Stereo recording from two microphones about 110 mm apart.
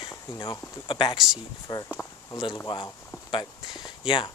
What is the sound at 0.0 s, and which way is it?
Speech, 50° left (ahead or behind).